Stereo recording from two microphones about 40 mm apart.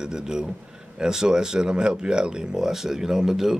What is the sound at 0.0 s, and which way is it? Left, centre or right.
Speech, centre.